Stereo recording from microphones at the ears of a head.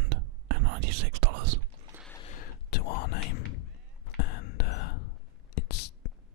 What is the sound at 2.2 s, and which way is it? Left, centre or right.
Whispering, left.